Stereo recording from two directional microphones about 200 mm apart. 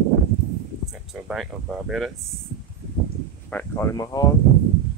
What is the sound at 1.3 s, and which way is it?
Speech, centre (ahead or behind).